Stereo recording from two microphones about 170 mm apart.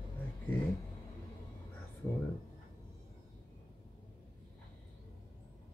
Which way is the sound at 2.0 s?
15° left (ahead or behind).